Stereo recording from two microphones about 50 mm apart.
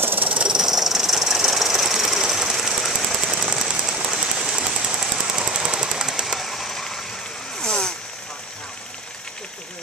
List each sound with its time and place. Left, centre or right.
0.0 s hiss: right
0.3 s jackhammer: centre
6.2 s a sound: centre
7.5 s vehicle: centre